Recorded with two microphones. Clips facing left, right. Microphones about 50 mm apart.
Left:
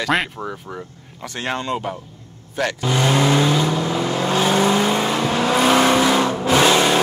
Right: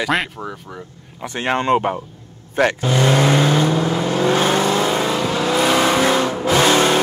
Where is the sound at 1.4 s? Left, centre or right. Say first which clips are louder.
Right 5 dB; right.